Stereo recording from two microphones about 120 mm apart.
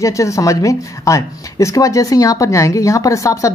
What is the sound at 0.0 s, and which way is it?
Speech, 25° left (ahead or behind).